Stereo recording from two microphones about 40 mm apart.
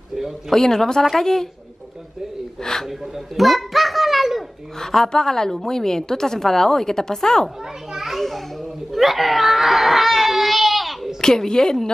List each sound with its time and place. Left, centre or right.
0.5 s a woman's voice: centre
2.6 s a woman's voice: centre
3.3 s a sound: centre
4.7 s a woman's voice: centre
7.9 s children playing: centre
8.9 s baby cry: centre
11.1 s a woman's voice: centre